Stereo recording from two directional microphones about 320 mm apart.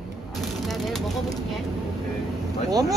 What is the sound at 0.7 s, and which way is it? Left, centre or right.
Speech, centre.